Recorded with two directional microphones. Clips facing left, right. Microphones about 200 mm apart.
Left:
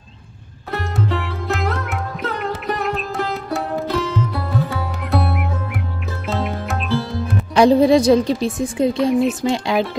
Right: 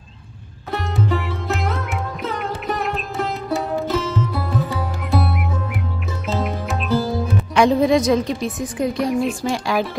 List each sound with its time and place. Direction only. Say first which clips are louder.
0.7 s music: right 1 dB; centre (ahead or behind)
7.5 s a woman's voice: left 3 dB; 35° left (ahead or behind)